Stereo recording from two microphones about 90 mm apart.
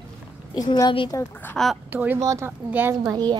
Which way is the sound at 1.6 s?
5° left (ahead or behind).